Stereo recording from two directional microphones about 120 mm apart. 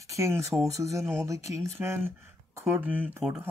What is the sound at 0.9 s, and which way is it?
Speech, 25° right (ahead or behind).